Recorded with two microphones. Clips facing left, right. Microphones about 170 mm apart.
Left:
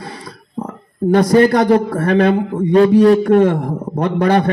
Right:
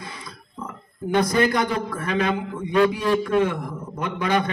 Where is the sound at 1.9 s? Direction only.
40° left (ahead or behind).